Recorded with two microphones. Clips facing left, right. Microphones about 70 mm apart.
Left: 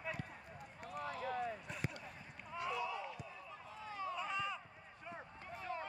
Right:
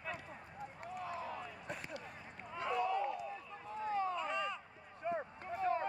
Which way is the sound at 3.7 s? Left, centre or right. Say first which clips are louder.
Right 8 dB; right.